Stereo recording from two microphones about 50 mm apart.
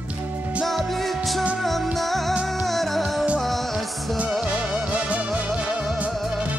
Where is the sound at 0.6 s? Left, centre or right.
Centre.